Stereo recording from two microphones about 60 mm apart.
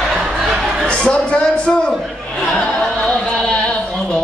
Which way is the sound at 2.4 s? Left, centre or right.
Centre.